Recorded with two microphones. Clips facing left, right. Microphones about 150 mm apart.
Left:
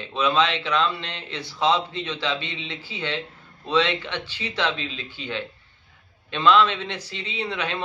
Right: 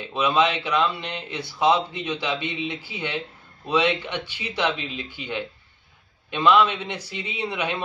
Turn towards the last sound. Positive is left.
turn(degrees=-15)  # may be behind; listen again after turning